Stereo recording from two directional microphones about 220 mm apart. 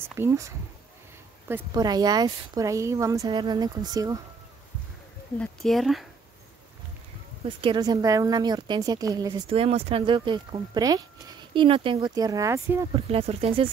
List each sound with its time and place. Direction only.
0.0 s speech: 10° right (ahead or behind)
5.4 s speech: centre (ahead or behind)
7.4 s a woman's voice: 20° right (ahead or behind)
12.9 s a woman's voice: 25° right (ahead or behind)